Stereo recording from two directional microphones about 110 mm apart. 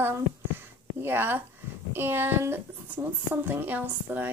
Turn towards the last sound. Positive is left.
turn(degrees=-15)  # may be behind; listen again after turning